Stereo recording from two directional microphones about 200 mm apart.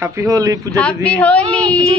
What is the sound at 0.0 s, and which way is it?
Speech, 15° right (ahead or behind).